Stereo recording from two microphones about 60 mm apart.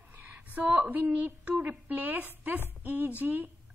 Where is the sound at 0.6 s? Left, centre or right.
Right.